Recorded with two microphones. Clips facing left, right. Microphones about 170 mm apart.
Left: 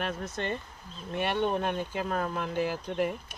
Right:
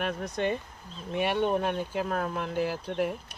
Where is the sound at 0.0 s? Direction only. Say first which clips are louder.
Right 4 dB; 15° right (ahead or behind).